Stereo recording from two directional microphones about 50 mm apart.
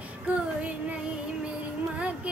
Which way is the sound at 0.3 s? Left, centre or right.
Right.